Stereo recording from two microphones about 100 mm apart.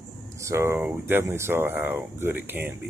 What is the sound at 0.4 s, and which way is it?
Speech, 30° right (ahead or behind).